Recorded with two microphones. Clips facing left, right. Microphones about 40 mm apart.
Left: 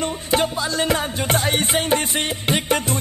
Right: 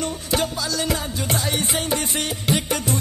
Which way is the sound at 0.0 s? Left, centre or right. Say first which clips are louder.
Left 3 dB; left.